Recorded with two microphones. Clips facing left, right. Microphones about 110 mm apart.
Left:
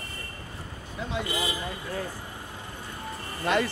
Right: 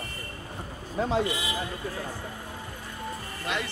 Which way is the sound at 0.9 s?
35° right (ahead or behind).